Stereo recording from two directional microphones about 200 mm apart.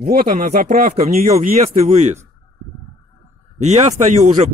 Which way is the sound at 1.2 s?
35° right (ahead or behind).